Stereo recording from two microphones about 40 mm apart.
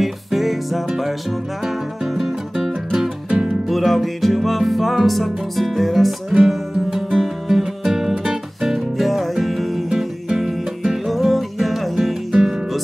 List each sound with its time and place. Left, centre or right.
0.0 s music: centre
2.1 s music: centre
3.3 s music: right
3.6 s music: centre
8.9 s music: centre
11.1 s music: centre